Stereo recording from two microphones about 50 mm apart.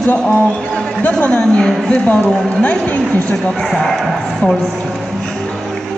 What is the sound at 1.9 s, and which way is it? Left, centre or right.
A woman's voice, left.